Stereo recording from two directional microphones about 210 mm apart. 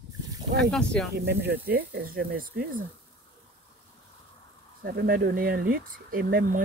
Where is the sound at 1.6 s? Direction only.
45° right (ahead or behind).